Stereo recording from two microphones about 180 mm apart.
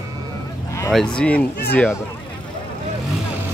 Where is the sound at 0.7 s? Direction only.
15° left (ahead or behind).